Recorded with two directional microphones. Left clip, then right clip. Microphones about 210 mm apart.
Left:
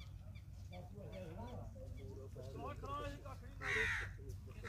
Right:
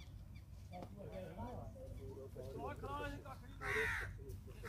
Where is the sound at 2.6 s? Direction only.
45° left (ahead or behind).